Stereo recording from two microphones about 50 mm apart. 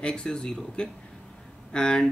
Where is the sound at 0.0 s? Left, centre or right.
Centre.